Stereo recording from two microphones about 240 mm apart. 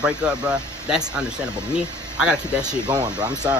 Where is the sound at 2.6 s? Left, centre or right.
Centre.